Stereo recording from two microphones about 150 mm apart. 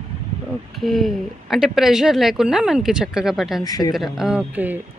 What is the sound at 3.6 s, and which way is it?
Speech, 25° left (ahead or behind).